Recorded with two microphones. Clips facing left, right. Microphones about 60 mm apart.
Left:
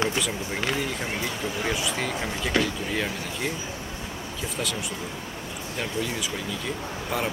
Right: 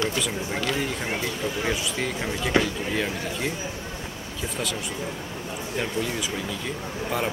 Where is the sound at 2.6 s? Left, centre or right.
Right.